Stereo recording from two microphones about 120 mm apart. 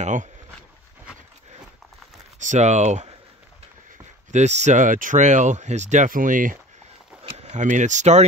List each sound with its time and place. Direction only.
0.0 s speech: 90° right
2.4 s speech: 80° right
4.3 s speech: 70° right (ahead or behind); by 6.4 s 90° right
7.2 s speech: 65° right (ahead or behind)